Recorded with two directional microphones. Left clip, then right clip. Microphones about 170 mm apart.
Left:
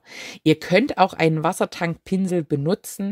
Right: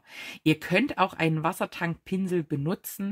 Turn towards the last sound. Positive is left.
turn(degrees=30)  # may be behind; listen again after turning